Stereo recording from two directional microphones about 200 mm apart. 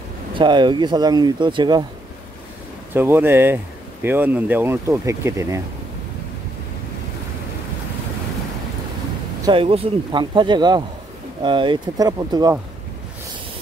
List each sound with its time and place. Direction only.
0.3 s speech: 25° right (ahead or behind)
2.9 s speech: 10° right (ahead or behind)
9.4 s speech: 25° right (ahead or behind)